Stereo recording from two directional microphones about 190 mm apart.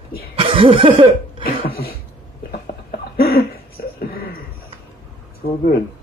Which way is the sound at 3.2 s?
55° left (ahead or behind).